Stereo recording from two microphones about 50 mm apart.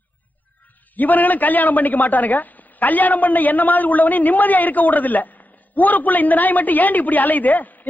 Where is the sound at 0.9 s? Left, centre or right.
Left.